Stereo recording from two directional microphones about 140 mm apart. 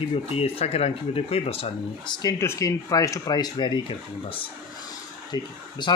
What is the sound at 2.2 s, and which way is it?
Speech, 25° left (ahead or behind).